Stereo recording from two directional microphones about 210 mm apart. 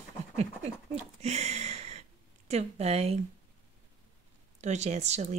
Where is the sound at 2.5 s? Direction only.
30° right (ahead or behind).